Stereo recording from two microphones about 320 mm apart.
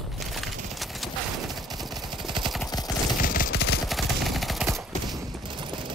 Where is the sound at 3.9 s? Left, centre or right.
Centre.